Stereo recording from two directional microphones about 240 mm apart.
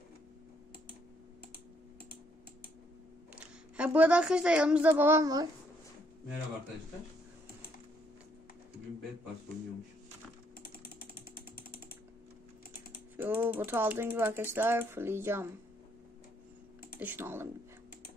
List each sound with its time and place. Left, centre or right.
3.3 s speech: centre
10.6 s ratchet: left
13.1 s speech: centre
17.0 s speech: centre